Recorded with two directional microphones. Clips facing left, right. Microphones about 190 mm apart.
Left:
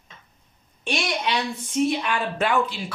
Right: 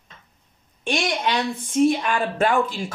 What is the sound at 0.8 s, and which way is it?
A woman's voice, 55° right (ahead or behind).